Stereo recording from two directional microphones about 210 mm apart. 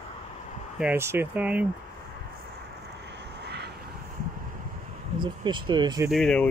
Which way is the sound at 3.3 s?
50° right (ahead or behind).